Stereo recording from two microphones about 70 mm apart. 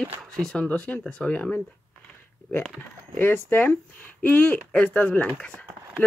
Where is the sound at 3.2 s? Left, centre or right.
Left.